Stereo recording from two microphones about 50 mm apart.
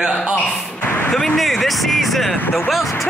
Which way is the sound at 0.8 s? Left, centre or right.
Left.